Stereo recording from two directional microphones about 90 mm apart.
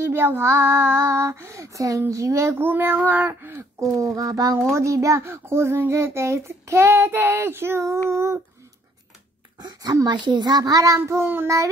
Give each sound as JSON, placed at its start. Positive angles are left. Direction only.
{"t": 0.0, "sound": "child singing", "side_deg": -25}
{"t": 4.7, "sound": "a child's voice", "side_deg": -35}
{"t": 9.6, "sound": "a woman's voice", "side_deg": -50}
{"t": 11.1, "sound": "a child's voice", "side_deg": -25}